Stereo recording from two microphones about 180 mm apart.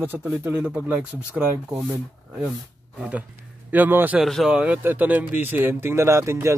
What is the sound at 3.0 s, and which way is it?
A man's voice, 10° right (ahead or behind).